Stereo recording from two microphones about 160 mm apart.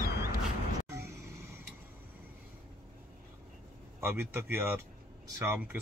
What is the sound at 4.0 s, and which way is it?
Speech, 15° right (ahead or behind).